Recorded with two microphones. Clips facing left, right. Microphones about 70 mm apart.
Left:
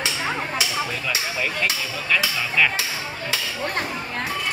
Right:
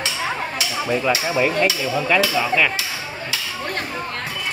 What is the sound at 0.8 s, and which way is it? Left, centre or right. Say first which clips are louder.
Hammer: right 7 dB; centre.